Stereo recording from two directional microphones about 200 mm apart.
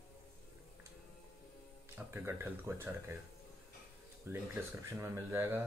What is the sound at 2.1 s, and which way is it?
Speech, 10° right (ahead or behind).